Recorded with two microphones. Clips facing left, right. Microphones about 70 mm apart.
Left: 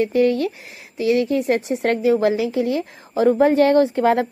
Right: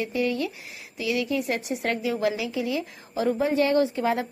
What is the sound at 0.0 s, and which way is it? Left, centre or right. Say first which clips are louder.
A woman's voice: left 9 dB; left.